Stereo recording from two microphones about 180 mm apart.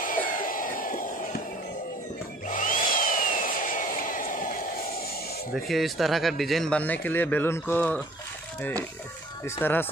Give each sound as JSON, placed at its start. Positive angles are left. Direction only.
{"t": 0.0, "sound": "a sound", "side_deg": 50}
{"t": 2.4, "sound": "tools", "side_deg": 45}
{"t": 5.7, "sound": "speech", "side_deg": 0}
{"t": 9.6, "sound": "speech", "side_deg": 10}